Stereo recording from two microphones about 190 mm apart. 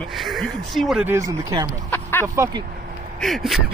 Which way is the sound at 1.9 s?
10° left (ahead or behind).